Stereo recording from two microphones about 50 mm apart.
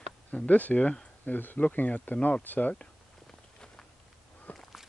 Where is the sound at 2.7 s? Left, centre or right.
Centre.